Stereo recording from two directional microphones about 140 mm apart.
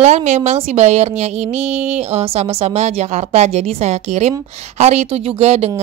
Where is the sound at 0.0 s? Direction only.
55° right (ahead or behind).